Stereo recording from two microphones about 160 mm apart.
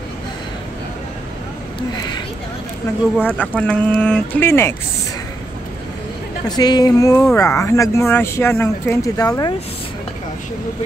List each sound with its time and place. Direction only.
3.2 s speech: 10° left (ahead or behind)
6.4 s speech: 25° left (ahead or behind)